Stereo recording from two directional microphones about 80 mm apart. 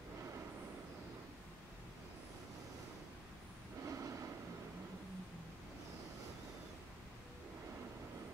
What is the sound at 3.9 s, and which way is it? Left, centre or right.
Train, right.